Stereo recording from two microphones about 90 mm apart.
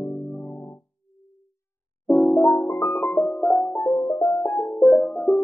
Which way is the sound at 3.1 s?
10° left (ahead or behind).